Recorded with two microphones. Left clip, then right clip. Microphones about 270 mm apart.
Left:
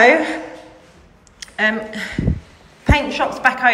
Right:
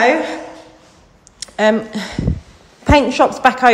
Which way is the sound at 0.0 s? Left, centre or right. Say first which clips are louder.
Left 2 dB; centre.